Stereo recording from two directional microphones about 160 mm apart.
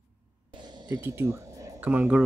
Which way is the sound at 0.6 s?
25° right (ahead or behind).